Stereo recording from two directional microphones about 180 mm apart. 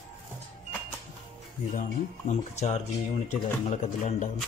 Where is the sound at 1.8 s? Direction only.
40° left (ahead or behind).